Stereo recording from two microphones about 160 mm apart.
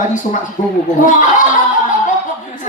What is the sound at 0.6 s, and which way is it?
Speech, 55° left (ahead or behind).